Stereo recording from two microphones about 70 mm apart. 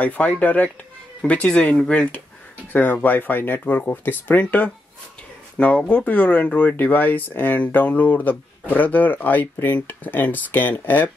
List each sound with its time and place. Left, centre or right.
0.0 s speech: left
5.8 s speech: left